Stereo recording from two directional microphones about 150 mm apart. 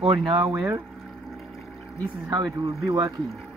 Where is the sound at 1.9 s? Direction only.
10° left (ahead or behind).